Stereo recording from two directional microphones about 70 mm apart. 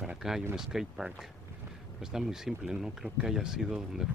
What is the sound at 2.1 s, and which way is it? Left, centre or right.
Speech, centre.